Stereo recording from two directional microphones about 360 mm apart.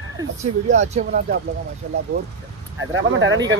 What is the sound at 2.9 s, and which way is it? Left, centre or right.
Speech, right.